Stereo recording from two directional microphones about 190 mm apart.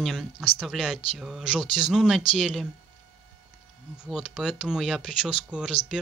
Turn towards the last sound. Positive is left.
turn(degrees=-5)  # may be behind; listen again after turning